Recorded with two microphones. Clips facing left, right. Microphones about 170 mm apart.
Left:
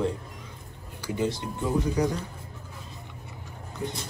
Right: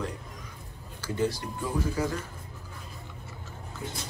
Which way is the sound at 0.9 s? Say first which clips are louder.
Left 1 dB; 15° left (ahead or behind).